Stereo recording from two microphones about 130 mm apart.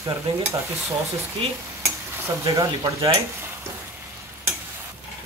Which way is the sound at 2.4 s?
25° right (ahead or behind).